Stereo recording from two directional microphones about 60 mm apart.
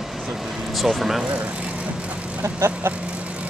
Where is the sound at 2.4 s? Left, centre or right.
Right.